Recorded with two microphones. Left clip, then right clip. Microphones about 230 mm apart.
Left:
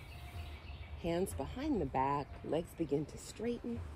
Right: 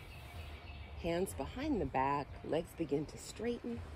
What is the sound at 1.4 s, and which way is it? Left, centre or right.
Speech, centre.